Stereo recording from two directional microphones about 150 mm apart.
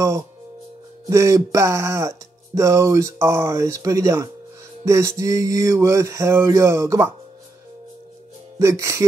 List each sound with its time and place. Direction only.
1.1 s speech: 20° right (ahead or behind)
8.5 s speech: 20° right (ahead or behind)